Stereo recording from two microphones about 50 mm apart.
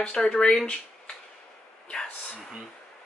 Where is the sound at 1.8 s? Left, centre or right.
Centre.